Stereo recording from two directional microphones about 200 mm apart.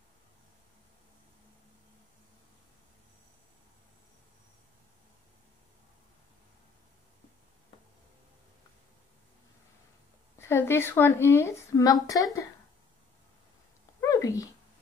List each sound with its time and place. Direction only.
10.4 s a woman's voice: 10° left (ahead or behind)
14.0 s cat: 15° left (ahead or behind)